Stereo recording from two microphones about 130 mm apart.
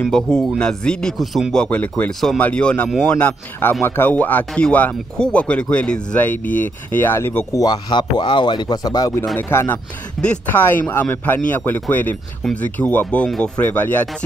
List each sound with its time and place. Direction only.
0.0 s speech: 5° left (ahead or behind)
7.6 s speech: 35° left (ahead or behind)
9.4 s speech: 15° left (ahead or behind)